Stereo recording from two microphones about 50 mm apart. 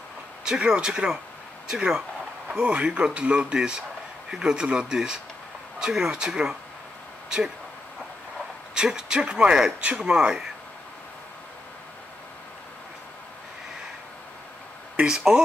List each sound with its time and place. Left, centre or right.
0.5 s speech: centre
2.5 s speech: right
8.7 s speech: centre
15.0 s speech: centre